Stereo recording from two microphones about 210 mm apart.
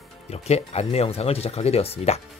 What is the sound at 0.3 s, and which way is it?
Speech, 30° left (ahead or behind).